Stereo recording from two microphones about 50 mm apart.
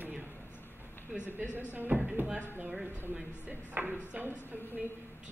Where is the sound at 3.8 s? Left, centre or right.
Right.